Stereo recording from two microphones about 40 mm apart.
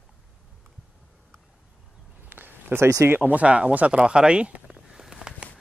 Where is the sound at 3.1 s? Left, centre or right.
Right.